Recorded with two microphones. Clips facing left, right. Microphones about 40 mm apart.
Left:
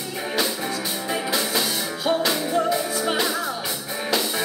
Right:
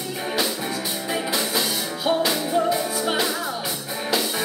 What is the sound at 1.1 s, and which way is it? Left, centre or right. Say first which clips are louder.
Music: even; centre.